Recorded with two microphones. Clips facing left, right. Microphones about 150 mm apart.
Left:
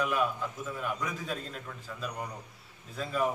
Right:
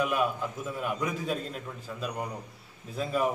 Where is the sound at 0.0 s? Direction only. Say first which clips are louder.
Right 2 dB; 10° right (ahead or behind).